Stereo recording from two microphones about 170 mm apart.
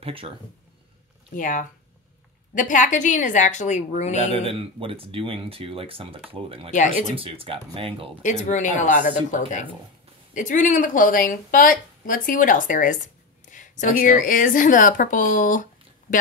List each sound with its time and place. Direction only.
0.0 s speech: 30° right (ahead or behind)
1.3 s speech: 50° left (ahead or behind)
4.3 s speech: 35° right (ahead or behind)
6.7 s speech: 45° left (ahead or behind)
7.2 s speech: 35° right (ahead or behind)
8.2 s speech: 45° left (ahead or behind)